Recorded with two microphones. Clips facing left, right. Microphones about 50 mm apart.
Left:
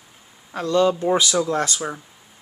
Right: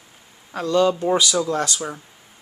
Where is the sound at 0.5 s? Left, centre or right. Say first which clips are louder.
Even; centre.